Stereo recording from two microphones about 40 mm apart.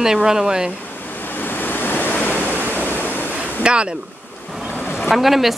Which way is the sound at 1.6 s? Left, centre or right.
Left.